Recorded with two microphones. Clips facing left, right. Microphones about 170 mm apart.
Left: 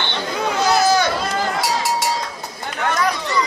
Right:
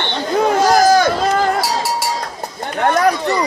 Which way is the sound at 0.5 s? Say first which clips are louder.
Right 4 dB; 50° right (ahead or behind).